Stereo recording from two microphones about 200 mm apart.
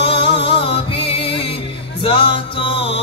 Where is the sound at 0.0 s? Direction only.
30° left (ahead or behind).